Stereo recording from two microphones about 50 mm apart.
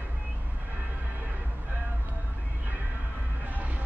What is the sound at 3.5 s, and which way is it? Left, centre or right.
Music, right.